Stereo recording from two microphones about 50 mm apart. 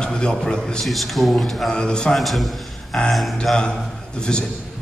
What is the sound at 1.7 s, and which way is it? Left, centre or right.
Speech, centre.